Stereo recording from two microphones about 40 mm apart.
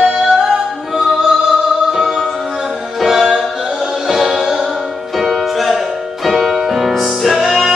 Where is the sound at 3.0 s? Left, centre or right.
Centre.